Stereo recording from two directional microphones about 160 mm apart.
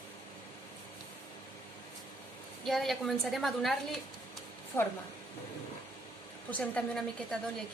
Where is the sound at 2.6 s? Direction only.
Centre (ahead or behind).